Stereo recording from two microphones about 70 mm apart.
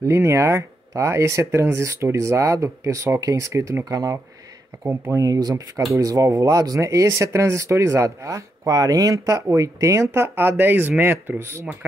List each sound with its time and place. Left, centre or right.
0.0 s speech: right
5.9 s speech: right